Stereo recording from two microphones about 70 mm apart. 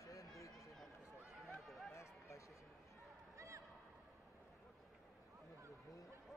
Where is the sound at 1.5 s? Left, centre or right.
Centre.